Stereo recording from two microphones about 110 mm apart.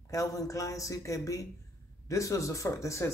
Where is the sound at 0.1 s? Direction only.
30° left (ahead or behind).